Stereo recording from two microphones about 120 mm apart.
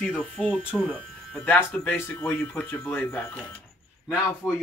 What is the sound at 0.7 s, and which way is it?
Speech, 10° left (ahead or behind).